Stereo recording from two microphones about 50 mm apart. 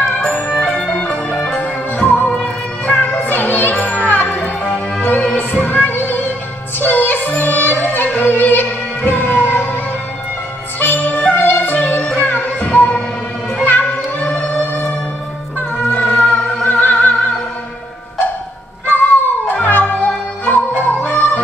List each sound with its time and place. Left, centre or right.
0.5 s music: centre
1.6 s music: left
2.3 s music: centre
3.0 s music: left
3.7 s music: left
10.8 s music: left
15.8 s music: centre
16.6 s opera: left
18.9 s cat: left
19.5 s music: left